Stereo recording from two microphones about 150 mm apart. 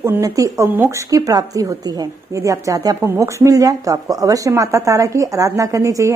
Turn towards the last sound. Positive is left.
turn(degrees=-20)  # may be behind; listen again after turning